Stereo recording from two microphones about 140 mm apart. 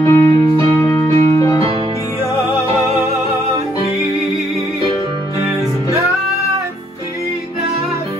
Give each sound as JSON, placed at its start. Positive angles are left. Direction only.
{"t": 0.0, "sound": "music", "side_deg": 25}